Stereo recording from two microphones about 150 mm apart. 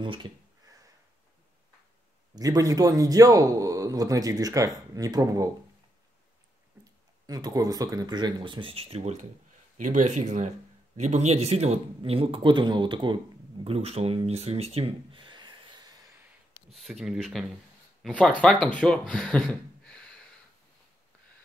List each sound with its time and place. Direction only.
0.0 s a sound: 30° right (ahead or behind)
2.3 s a man's voice: 25° right (ahead or behind)
6.8 s speech: 25° right (ahead or behind); by 9.3 s 45° right (ahead or behind)
9.8 s speech: 60° right (ahead or behind); by 13.2 s 30° right (ahead or behind)
13.7 s a sound: 40° right (ahead or behind); by 16.1 s 25° right (ahead or behind)
16.7 s speech: centre (ahead or behind)